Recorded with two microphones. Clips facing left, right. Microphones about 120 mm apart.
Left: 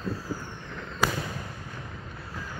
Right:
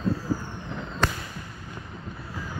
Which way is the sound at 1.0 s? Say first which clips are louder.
Even; 5° left (ahead or behind).